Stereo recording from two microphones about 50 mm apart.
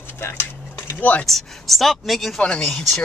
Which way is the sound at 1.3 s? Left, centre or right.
Centre.